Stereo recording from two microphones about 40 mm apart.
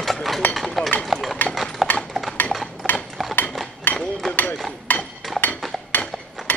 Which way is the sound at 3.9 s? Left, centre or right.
Left.